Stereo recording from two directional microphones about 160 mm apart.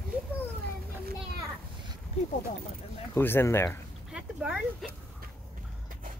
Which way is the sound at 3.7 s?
5° right (ahead or behind).